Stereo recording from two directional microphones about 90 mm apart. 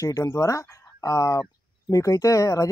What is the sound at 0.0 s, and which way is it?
Speech, 35° left (ahead or behind).